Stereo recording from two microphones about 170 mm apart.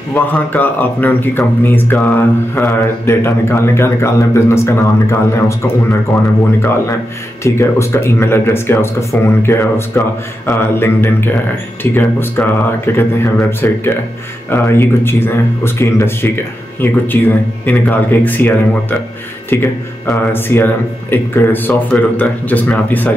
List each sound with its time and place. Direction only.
0.1 s speech: 10° left (ahead or behind)
7.4 s speech: 15° left (ahead or behind)